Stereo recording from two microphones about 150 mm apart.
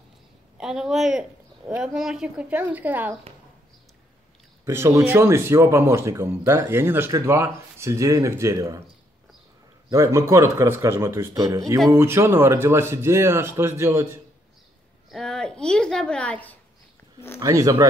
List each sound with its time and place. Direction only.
0.6 s a woman's voice: 5° right (ahead or behind)
4.6 s speech: 15° right (ahead or behind)
9.8 s a man's voice: 20° right (ahead or behind)
15.0 s a woman's voice: 5° left (ahead or behind)
17.4 s a man's voice: 20° right (ahead or behind)